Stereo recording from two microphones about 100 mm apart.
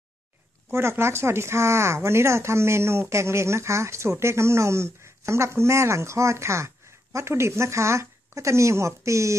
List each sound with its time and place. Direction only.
0.7 s speech: 25° right (ahead or behind)